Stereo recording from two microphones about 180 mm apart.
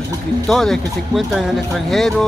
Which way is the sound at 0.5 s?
Centre (ahead or behind).